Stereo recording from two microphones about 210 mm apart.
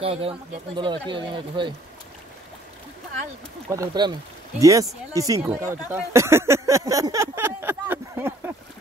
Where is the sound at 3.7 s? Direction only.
20° right (ahead or behind).